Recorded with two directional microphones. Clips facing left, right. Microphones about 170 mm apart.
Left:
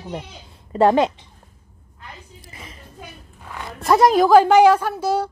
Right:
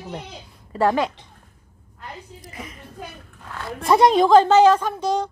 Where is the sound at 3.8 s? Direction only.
Centre (ahead or behind).